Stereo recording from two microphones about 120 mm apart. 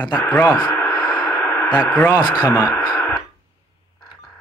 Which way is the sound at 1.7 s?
35° left (ahead or behind).